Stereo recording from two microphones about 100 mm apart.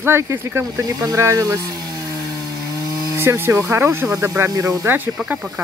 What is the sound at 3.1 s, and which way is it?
Speech, 25° right (ahead or behind).